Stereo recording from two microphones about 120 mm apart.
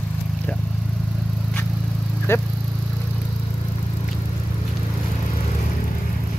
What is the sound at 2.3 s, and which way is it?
Speech, 20° left (ahead or behind).